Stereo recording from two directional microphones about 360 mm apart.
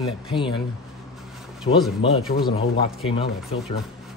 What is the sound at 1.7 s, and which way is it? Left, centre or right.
Speech, left.